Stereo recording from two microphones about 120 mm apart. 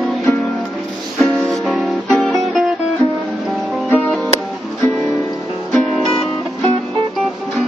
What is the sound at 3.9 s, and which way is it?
Music, 15° left (ahead or behind).